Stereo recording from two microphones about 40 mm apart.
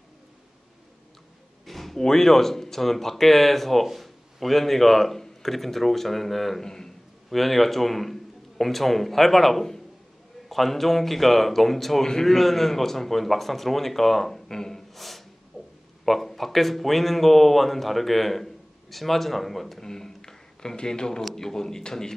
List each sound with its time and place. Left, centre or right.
1.7 s a man's voice: centre
15.5 s a sound: centre
16.1 s speech: centre